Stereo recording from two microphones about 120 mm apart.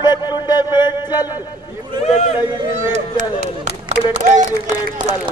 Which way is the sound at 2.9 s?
80° right.